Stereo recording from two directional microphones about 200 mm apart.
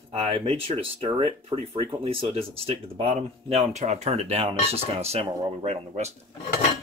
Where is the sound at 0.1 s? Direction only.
30° right (ahead or behind).